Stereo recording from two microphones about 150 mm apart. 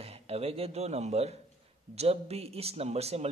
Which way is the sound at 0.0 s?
40° right (ahead or behind).